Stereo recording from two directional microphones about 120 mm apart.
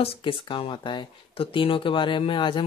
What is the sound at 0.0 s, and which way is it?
Speech, 50° left (ahead or behind).